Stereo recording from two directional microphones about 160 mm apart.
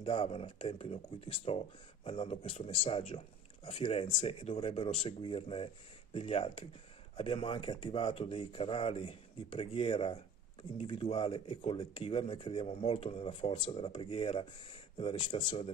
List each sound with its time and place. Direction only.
0.0 s speech: 35° left (ahead or behind)